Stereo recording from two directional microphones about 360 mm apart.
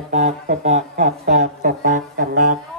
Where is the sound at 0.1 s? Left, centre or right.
Centre.